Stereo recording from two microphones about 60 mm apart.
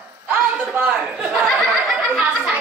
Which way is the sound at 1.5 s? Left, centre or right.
Centre.